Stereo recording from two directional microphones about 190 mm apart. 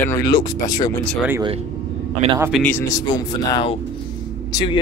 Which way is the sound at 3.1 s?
25° left (ahead or behind).